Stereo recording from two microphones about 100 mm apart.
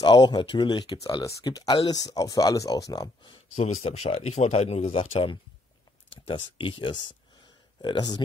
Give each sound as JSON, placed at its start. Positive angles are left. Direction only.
{"t": 0.0, "sound": "speech", "side_deg": 50}
{"t": 3.6, "sound": "speech", "side_deg": 90}